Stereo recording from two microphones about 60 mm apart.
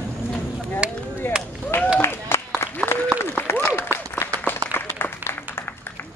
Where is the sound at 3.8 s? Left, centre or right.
Left.